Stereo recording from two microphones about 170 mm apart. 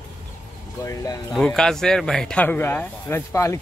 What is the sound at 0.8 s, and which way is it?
Speech, 20° left (ahead or behind).